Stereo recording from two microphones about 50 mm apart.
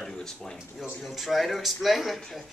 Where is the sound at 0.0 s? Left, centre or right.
Centre.